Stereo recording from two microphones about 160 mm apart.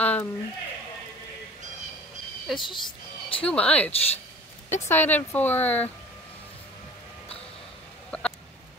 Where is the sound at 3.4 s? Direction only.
10° left (ahead or behind).